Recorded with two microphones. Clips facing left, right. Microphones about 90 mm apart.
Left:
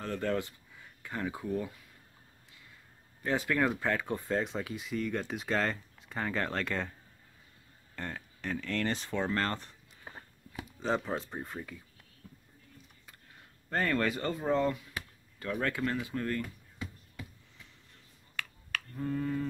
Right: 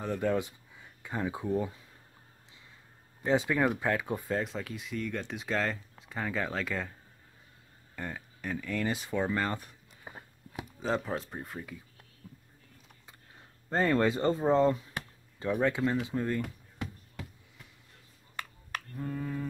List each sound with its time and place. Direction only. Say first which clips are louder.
0.0 s speech: right 3 dB; 15° right (ahead or behind)
3.2 s speech: right 2 dB; 15° right (ahead or behind)
7.9 s a sound: right 1 dB; 5° right (ahead or behind)
10.8 s speech: even; centre (ahead or behind)
13.7 s speech: right 4 dB; 25° right (ahead or behind)
15.3 s speech: right 5 dB; 20° right (ahead or behind)
16.7 s a sound: right 3 dB; 60° right (ahead or behind)
18.9 s speech: left 3 dB; 5° right (ahead or behind)